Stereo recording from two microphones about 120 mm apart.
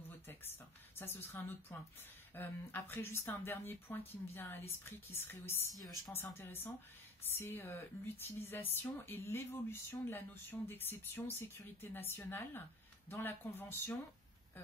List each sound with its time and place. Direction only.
0.3 s speech: 20° left (ahead or behind)